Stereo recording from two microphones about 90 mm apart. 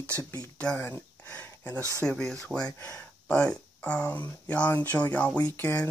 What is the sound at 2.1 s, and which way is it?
Speech, 5° left (ahead or behind).